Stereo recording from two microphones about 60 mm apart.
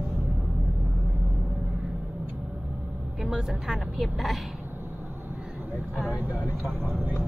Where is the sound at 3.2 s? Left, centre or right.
Centre.